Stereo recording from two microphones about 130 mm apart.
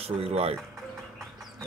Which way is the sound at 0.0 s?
50° right (ahead or behind).